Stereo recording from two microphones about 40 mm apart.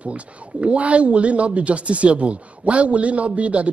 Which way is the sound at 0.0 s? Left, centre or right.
Right.